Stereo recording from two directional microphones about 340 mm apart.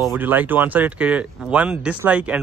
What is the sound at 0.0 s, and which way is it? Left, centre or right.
Speech, centre.